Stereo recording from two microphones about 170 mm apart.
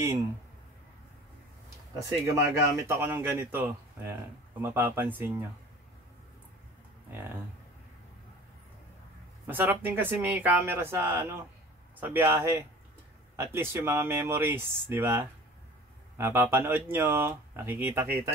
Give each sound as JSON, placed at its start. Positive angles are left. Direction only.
{"t": 2.0, "sound": "speech", "side_deg": -20}
{"t": 9.5, "sound": "speech", "side_deg": -10}